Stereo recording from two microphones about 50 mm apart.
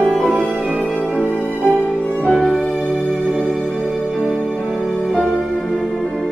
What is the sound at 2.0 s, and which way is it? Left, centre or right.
Music, centre.